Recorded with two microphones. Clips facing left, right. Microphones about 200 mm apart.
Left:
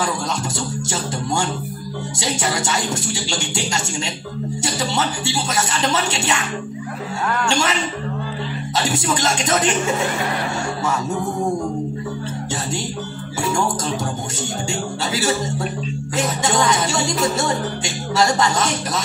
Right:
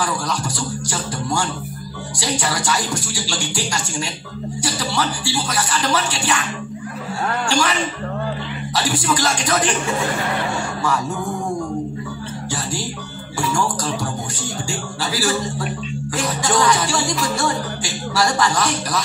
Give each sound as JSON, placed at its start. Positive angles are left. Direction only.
{"t": 0.8, "sound": "a woman's voice", "side_deg": 25}
{"t": 7.4, "sound": "a woman's voice", "side_deg": 25}
{"t": 8.7, "sound": "a woman's voice", "side_deg": 25}
{"t": 13.4, "sound": "a woman's voice", "side_deg": 25}
{"t": 15.1, "sound": "a woman's voice", "side_deg": 20}